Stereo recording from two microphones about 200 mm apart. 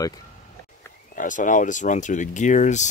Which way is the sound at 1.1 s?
40° left (ahead or behind).